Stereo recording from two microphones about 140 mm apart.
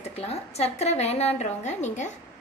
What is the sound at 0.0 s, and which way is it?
A woman's voice, 50° left (ahead or behind).